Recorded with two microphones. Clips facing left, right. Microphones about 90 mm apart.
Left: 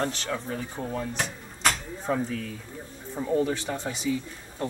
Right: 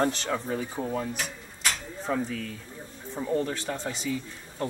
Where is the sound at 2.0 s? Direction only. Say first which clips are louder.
Left 1 dB; centre (ahead or behind).